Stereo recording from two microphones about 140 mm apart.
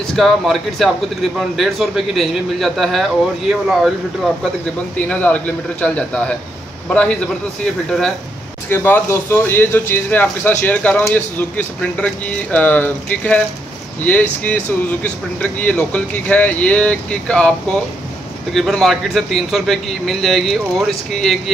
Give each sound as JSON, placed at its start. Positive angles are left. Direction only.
{"t": 0.1, "sound": "a man's voice", "side_deg": 0}
{"t": 5.0, "sound": "speech", "side_deg": 10}
{"t": 8.6, "sound": "a man's voice", "side_deg": 15}